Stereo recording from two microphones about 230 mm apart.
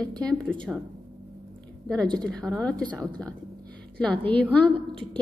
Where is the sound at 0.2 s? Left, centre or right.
Centre.